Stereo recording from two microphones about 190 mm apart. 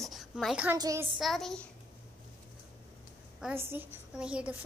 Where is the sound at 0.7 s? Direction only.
20° right (ahead or behind).